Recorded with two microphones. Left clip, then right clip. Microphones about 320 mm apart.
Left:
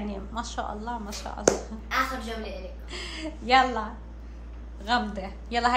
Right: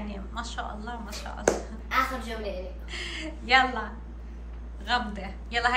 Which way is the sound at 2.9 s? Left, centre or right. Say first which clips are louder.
Right 1 dB; centre.